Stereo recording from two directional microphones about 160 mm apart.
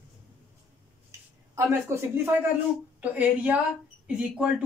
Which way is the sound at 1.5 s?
15° right (ahead or behind).